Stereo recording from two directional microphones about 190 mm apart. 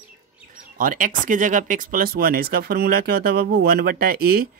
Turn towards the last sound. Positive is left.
turn(degrees=-50)  # may be behind; listen again after turning